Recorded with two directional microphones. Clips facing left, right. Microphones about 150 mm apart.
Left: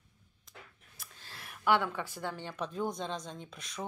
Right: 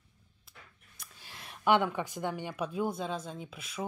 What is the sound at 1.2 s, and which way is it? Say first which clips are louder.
Speech: right 2 dB; 20° right (ahead or behind).